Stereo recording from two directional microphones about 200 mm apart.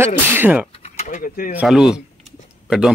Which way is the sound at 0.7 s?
35° left (ahead or behind).